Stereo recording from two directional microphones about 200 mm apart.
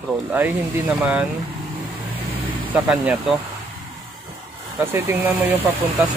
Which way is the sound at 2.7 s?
5° right (ahead or behind).